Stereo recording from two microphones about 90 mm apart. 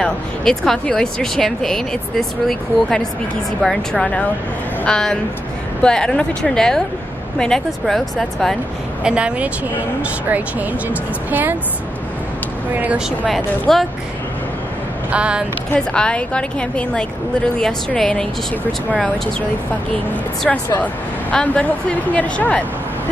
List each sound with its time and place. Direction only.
0.0 s a woman's voice: 10° left (ahead or behind)
9.0 s a woman's voice: 10° right (ahead or behind)
12.7 s a woman's voice: 15° right (ahead or behind)
13.3 s speech: centre (ahead or behind)
15.0 s speech: 10° right (ahead or behind)
15.7 s a woman's voice: 10° left (ahead or behind)
20.4 s a woman's voice: 15° left (ahead or behind)